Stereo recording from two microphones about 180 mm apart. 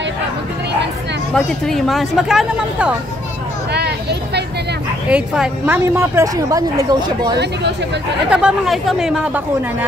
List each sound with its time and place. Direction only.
1.3 s speech: centre (ahead or behind)
3.7 s a sound: 65° right (ahead or behind)
5.1 s speech: 5° right (ahead or behind); by 7.3 s 20° right (ahead or behind)
8.3 s speech: 5° right (ahead or behind)